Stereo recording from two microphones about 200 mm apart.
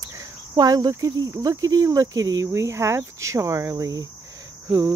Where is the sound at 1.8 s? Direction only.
15° right (ahead or behind).